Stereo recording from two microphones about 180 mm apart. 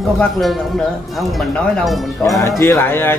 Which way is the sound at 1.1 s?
Centre (ahead or behind).